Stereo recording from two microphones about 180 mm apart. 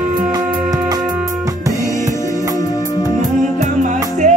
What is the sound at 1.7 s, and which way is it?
Music, 45° right (ahead or behind).